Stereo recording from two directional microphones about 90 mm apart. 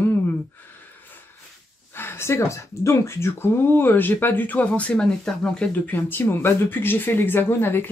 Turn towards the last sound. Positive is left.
turn(degrees=25)  # may be behind; listen again after turning